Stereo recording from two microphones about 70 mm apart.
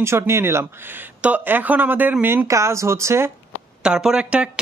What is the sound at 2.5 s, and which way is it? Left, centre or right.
Speech, right.